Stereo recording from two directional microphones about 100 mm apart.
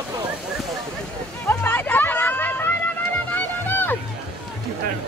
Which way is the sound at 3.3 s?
20° left (ahead or behind).